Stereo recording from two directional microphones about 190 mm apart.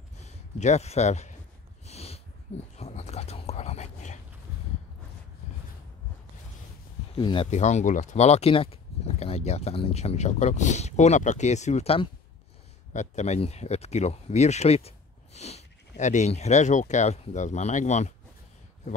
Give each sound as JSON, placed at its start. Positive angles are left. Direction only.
{"t": 0.2, "sound": "speech", "side_deg": 35}
{"t": 1.9, "sound": "a sound", "side_deg": 35}
{"t": 7.2, "sound": "speech", "side_deg": 25}